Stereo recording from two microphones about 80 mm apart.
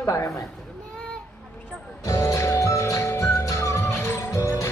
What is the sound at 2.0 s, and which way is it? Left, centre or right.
Music, left.